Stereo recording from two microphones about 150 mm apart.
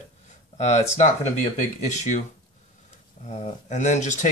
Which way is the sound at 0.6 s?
55° left (ahead or behind).